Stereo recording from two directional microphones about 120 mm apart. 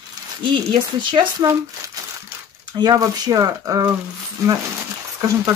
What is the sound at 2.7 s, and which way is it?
Speech, 35° right (ahead or behind).